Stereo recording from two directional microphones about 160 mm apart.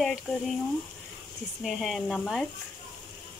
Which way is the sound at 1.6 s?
Centre (ahead or behind).